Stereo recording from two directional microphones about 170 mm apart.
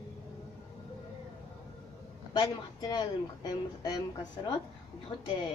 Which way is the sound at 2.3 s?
25° left (ahead or behind).